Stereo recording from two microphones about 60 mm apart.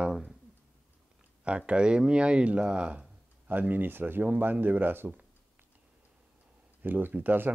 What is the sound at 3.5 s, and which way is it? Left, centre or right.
Speech, right.